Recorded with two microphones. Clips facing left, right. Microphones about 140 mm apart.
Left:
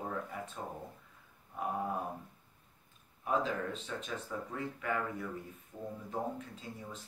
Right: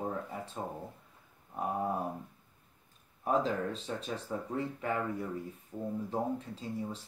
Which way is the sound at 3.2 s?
35° right (ahead or behind).